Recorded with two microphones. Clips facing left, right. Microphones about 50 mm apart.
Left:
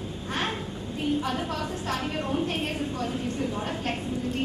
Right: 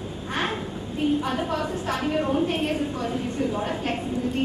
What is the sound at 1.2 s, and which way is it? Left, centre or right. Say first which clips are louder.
A woman's voice: right 3 dB; centre.